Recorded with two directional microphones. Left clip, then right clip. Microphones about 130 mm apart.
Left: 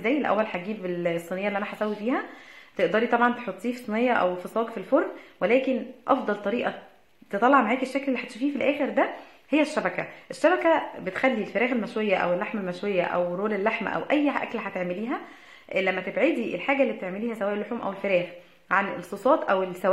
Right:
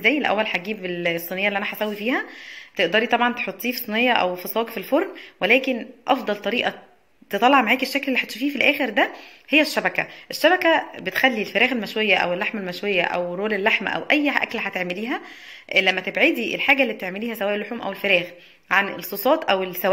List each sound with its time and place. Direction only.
0.0 s speech: 15° right (ahead or behind)
2.8 s speech: 10° right (ahead or behind)